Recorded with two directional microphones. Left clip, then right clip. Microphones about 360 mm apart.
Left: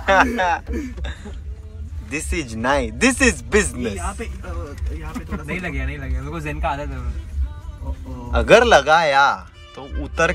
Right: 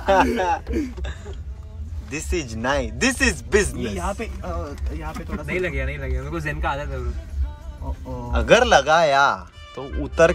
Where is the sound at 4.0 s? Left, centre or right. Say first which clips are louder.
Right 2 dB; centre.